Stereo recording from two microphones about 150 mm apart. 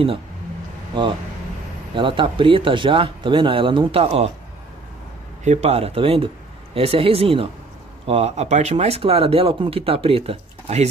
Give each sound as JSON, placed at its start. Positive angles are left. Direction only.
{"t": 2.0, "sound": "speech", "side_deg": -35}
{"t": 5.4, "sound": "speech", "side_deg": -50}